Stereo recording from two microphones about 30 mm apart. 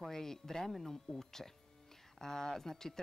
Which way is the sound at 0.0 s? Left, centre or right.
Centre.